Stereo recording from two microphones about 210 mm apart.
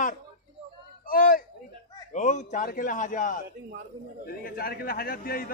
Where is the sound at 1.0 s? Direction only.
40° left (ahead or behind).